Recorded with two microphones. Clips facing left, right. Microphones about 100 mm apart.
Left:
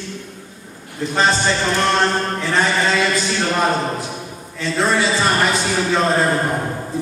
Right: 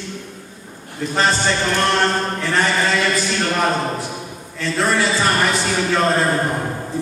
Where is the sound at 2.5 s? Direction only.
20° left (ahead or behind).